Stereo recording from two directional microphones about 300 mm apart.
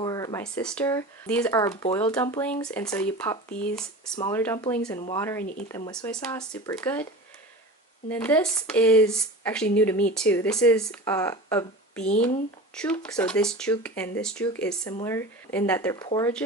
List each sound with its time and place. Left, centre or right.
0.0 s speech: centre
5.4 s speech: left
5.7 s speech: centre
8.1 s speech: centre